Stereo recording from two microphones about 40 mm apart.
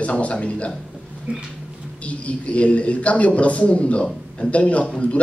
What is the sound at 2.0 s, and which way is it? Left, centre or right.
Speech, left.